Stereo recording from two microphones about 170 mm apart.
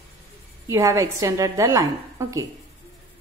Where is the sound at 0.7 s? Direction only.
15° right (ahead or behind).